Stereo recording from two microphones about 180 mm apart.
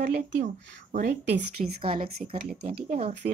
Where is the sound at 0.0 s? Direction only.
65° right (ahead or behind).